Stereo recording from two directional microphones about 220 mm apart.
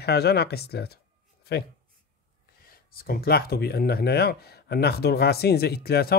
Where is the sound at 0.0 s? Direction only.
45° left (ahead or behind).